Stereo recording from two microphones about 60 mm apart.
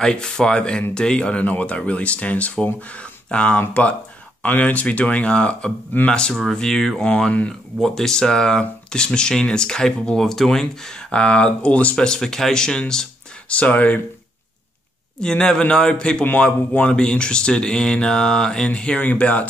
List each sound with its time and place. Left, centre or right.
0.0 s speech: centre
7.1 s speech: left
7.8 s speech: centre
13.5 s speech: left
15.1 s speech: centre